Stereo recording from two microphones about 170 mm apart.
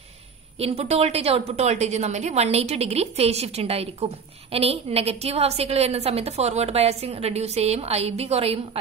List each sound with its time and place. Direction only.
0.6 s a woman's voice: 35° right (ahead or behind)